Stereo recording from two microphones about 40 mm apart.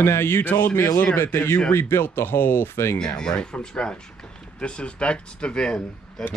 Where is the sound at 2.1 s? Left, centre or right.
Left.